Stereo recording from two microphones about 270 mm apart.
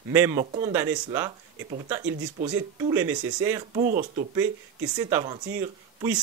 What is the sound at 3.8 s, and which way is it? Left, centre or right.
Speech, right.